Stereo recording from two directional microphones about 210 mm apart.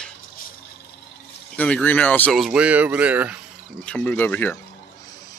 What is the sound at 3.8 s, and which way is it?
Speech, 5° left (ahead or behind).